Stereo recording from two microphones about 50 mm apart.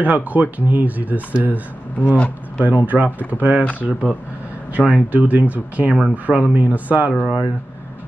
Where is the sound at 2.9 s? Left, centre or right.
Right.